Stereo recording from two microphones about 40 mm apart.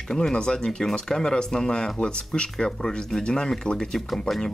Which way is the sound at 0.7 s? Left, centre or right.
Centre.